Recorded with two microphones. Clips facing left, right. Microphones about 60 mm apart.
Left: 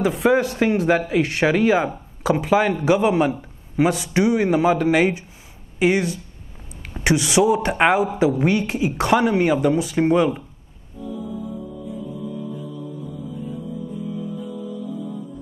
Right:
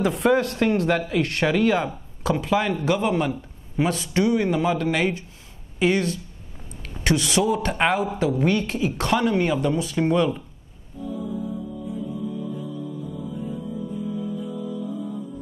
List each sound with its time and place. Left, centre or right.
0.0 s speech: centre
9.9 s speech: left